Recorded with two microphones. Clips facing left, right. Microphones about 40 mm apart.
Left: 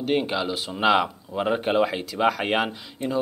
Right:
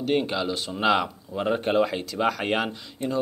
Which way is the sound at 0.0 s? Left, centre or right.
Centre.